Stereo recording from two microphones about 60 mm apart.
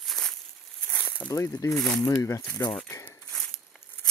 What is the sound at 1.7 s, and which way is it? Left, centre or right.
Speech, centre.